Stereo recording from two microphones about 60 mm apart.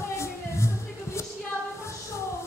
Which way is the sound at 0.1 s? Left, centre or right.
Left.